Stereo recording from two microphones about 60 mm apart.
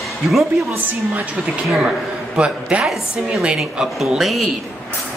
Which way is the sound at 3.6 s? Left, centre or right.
Centre.